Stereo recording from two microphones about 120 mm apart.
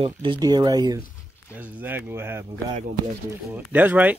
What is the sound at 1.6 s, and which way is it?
Speech, 15° right (ahead or behind).